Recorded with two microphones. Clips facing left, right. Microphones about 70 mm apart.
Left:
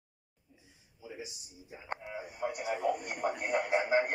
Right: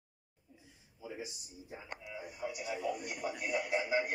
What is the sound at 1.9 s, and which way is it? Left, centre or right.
Radio, left.